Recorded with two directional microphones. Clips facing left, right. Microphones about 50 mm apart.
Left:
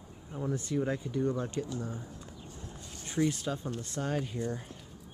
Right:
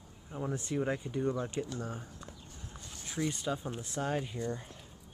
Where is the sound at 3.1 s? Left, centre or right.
Centre.